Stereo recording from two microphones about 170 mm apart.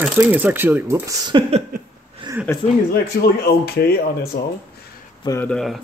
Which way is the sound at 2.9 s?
65° left (ahead or behind).